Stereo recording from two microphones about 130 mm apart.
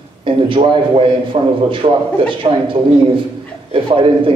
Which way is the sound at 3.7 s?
40° right (ahead or behind).